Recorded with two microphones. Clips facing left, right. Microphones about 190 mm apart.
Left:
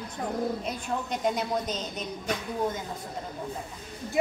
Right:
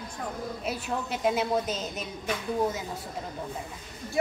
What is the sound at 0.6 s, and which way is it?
A woman's voice, 5° right (ahead or behind).